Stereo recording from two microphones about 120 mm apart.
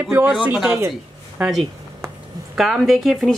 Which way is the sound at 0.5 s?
5° right (ahead or behind).